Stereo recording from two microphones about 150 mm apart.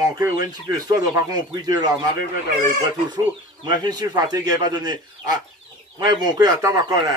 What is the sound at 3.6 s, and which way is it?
Speech, 25° right (ahead or behind).